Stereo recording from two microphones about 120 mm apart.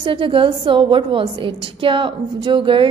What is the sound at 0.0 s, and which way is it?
A woman's voice, 45° right (ahead or behind).